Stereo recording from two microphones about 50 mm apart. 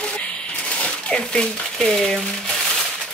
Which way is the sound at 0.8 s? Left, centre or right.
Centre.